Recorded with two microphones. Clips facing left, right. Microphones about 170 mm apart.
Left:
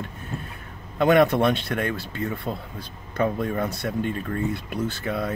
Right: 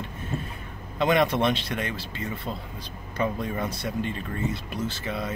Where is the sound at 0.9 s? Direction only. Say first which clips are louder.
Left 5 dB; 50° left (ahead or behind).